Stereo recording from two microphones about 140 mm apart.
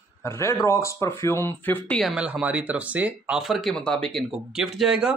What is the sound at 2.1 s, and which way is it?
Speech, 5° right (ahead or behind).